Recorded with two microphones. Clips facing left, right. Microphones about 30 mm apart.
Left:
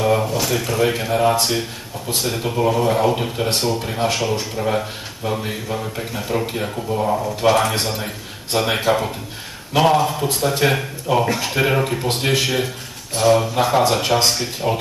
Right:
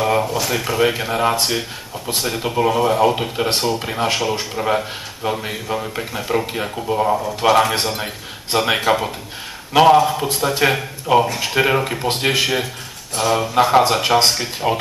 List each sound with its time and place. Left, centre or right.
0.0 s a sound: centre
0.5 s a man's voice: centre
6.9 s speech: right
7.2 s a man's voice: centre
13.6 s a man's voice: centre